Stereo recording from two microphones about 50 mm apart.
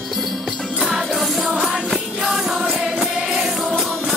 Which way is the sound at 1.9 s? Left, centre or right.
Centre.